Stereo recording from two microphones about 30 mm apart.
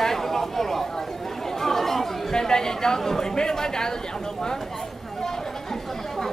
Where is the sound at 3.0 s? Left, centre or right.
Centre.